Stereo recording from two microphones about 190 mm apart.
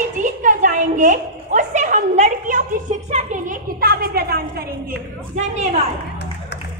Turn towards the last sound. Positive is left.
turn(degrees=-35)  # may be behind; listen again after turning